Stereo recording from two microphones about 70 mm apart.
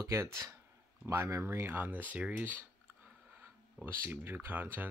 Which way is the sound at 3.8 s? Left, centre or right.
Right.